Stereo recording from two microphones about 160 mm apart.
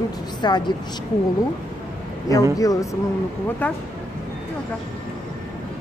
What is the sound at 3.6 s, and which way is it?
Speech, 10° left (ahead or behind).